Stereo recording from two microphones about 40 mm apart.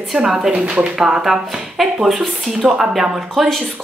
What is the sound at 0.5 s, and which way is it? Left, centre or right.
Speech, right.